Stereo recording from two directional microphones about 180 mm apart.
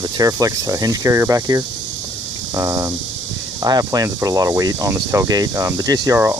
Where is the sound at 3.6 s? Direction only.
20° right (ahead or behind).